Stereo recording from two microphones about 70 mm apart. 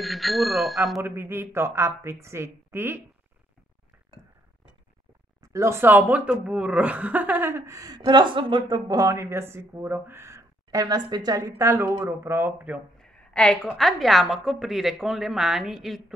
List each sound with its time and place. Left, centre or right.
0.0 s a woman's voice: centre
1.0 s speech: right
5.4 s speech: right
7.6 s speech: right
11.5 s speech: right
13.0 s a sound: centre
13.7 s a woman's voice: centre